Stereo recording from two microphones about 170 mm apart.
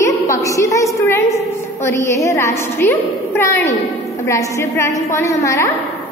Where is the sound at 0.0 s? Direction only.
20° left (ahead or behind).